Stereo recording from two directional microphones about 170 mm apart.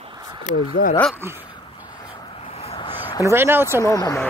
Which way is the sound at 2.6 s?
35° left (ahead or behind).